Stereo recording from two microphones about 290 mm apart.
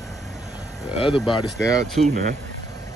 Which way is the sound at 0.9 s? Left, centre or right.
Centre.